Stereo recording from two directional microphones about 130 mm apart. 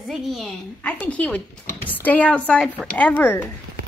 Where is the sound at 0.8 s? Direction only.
10° left (ahead or behind).